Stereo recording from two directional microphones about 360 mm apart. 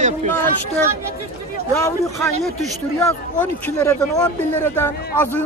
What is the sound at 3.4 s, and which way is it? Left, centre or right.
Speech, centre.